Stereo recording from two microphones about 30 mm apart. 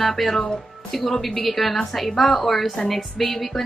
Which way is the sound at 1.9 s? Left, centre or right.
Centre.